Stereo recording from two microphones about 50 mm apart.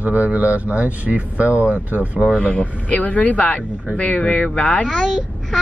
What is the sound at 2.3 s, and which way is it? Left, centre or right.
Speech, left.